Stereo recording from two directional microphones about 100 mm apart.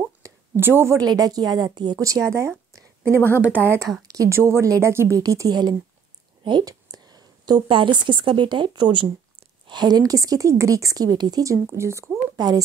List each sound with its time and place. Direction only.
0.2 s a sound: 35° right (ahead or behind)
0.6 s speech: 25° right (ahead or behind)
0.9 s a woman's voice: 40° right (ahead or behind)
2.2 s speech: 30° right (ahead or behind)
3.2 s a woman's voice: 25° left (ahead or behind)
4.1 s a sound: 35° right (ahead or behind)
4.4 s a woman's voice: 30° right (ahead or behind); by 5.8 s 45° right (ahead or behind)
6.4 s a sound: 45° right (ahead or behind)
8.1 s a woman's voice: 55° right (ahead or behind); by 12.1 s 30° right (ahead or behind)
12.4 s a woman's voice: 40° right (ahead or behind)